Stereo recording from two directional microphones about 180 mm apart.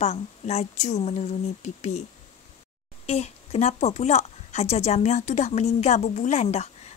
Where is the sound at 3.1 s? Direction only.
35° left (ahead or behind).